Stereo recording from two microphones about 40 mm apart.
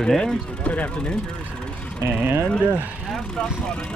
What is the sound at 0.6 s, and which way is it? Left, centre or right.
Speech, left.